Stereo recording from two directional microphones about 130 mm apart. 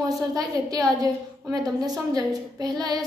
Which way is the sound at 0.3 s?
30° right (ahead or behind).